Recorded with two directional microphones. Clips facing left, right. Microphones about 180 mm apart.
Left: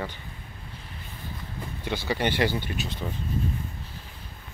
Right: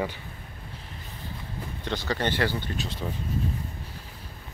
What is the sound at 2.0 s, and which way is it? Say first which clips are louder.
Speech: left 2 dB; 10° left (ahead or behind).